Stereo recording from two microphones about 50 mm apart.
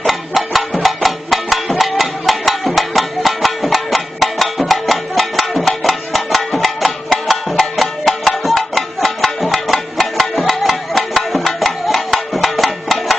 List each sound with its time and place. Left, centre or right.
0.0 s music: centre